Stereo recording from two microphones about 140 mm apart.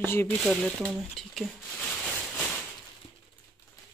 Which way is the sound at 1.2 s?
5° left (ahead or behind).